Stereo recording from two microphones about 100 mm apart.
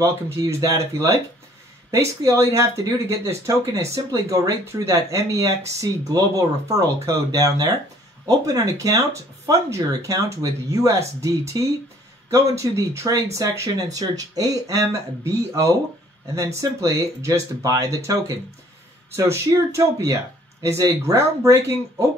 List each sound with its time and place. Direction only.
0.0 s speech: 30° right (ahead or behind)